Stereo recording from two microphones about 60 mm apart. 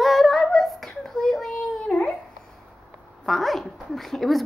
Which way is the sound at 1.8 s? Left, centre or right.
Left.